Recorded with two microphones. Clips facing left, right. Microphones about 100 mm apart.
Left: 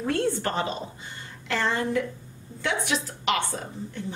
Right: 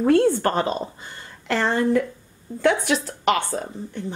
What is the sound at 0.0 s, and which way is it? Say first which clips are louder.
Speech: right 9 dB; 50° right (ahead or behind).